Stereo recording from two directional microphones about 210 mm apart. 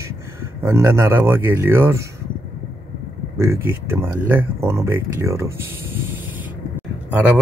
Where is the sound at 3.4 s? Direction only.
10° right (ahead or behind).